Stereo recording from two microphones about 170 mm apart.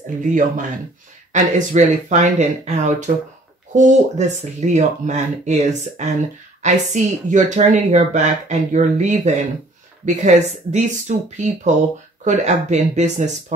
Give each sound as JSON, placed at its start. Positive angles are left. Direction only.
{"t": 0.2, "sound": "speech", "side_deg": -50}